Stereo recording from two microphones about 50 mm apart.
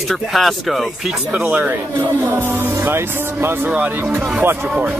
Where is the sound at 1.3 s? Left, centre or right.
Right.